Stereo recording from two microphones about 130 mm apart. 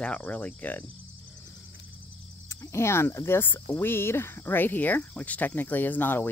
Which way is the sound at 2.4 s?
20° left (ahead or behind).